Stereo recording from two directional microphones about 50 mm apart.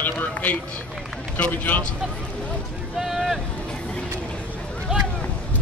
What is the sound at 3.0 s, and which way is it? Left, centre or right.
Boat, centre.